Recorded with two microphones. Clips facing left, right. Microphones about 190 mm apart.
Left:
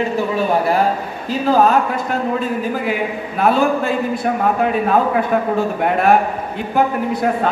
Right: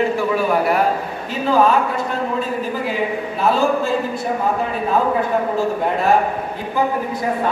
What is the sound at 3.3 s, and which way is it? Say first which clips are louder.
Speech: left 2 dB; 60° left (ahead or behind).